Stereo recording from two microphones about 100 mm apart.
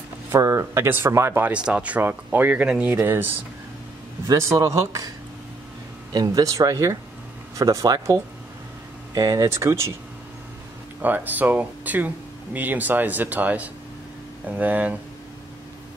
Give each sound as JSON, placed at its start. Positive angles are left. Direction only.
{"t": 0.3, "sound": "speech", "side_deg": -30}
{"t": 4.3, "sound": "speech", "side_deg": -30}
{"t": 6.1, "sound": "speech", "side_deg": -35}
{"t": 11.0, "sound": "speech", "side_deg": -15}